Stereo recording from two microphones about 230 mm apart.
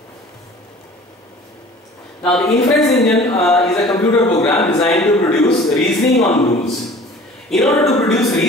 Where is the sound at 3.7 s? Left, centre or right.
Centre.